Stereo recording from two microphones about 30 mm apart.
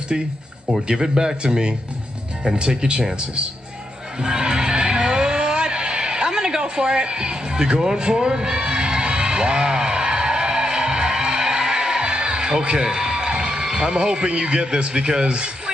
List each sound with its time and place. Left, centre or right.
0.9 s speech: right
1.4 s a man's voice: right
4.2 s a sound: right